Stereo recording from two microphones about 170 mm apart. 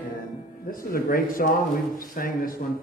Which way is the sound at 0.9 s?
60° left (ahead or behind).